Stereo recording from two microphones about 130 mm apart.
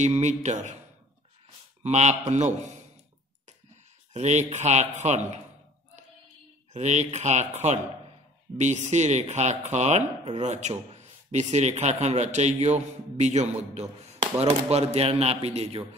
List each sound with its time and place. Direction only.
0.0 s a man's voice: 65° right (ahead or behind)
1.8 s a man's voice: 60° right (ahead or behind)
4.1 s a man's voice: 60° right (ahead or behind)
6.7 s a man's voice: 65° right (ahead or behind)